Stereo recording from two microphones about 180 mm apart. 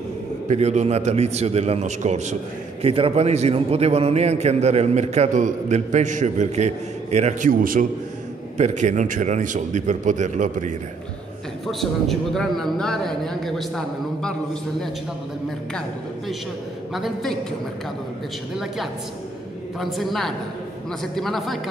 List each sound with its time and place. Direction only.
0.5 s a man's voice: 40° right (ahead or behind)
8.5 s a man's voice: 40° right (ahead or behind)
11.6 s a man's voice: centre (ahead or behind)
16.9 s a man's voice: centre (ahead or behind)
19.8 s a man's voice: centre (ahead or behind)